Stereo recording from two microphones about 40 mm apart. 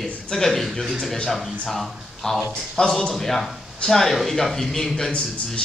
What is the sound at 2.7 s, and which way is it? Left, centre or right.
Speech, centre.